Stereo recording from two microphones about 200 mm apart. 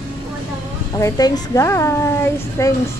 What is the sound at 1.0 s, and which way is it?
A woman's voice, 15° left (ahead or behind).